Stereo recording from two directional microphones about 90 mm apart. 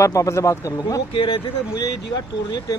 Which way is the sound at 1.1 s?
70° left (ahead or behind).